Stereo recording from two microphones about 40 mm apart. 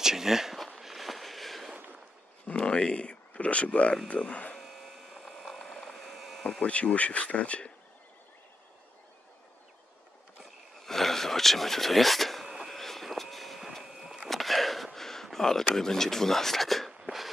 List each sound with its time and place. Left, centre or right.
0.0 s speech: centre
0.7 s a sound: centre
2.4 s speech: left
4.6 s a sound: centre
6.6 s speech: left
10.8 s a sound: centre
12.7 s vehicle: centre
13.8 s vehicle: centre
14.3 s gasp: centre
15.3 s speech: centre